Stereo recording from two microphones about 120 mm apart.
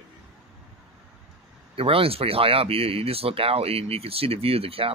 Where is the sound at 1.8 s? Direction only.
50° right (ahead or behind).